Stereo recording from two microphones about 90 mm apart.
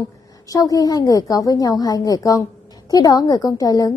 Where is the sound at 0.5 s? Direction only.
40° left (ahead or behind).